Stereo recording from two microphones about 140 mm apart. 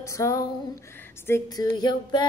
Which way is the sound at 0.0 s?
20° left (ahead or behind).